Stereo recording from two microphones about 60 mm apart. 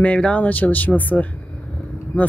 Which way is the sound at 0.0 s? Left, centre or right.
Centre.